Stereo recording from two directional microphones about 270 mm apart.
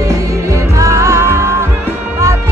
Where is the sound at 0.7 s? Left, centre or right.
Centre.